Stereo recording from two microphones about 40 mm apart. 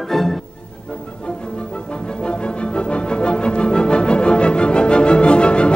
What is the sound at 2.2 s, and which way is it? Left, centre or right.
Music, left.